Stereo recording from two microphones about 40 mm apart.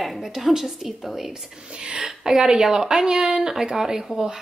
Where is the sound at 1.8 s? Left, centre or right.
Right.